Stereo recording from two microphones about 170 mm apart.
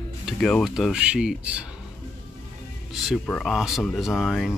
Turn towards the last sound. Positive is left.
turn(degrees=0)  # may be behind; listen again after turning